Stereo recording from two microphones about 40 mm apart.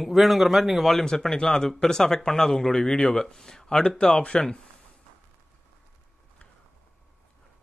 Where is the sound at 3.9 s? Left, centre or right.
Left.